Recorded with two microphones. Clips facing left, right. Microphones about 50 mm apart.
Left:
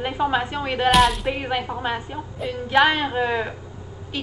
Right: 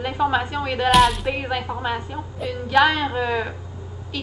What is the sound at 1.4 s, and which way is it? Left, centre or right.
Speech, left.